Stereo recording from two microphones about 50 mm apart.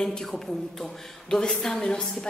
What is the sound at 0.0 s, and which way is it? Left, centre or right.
A woman's voice, centre.